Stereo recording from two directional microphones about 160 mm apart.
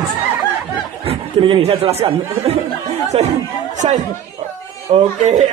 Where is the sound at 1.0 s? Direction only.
40° right (ahead or behind).